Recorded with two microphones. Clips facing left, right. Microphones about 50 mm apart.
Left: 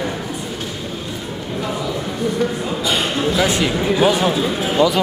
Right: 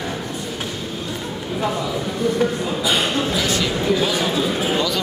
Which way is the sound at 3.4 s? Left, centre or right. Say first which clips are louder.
Left 3 dB; centre.